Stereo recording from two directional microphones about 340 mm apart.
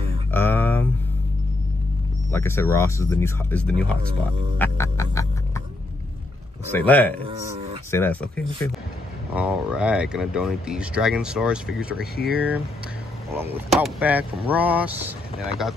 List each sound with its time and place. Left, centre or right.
0.3 s a sound: centre
2.3 s speech: centre
4.6 s music: centre
6.7 s speech: centre
7.2 s speech: centre
7.9 s speech: centre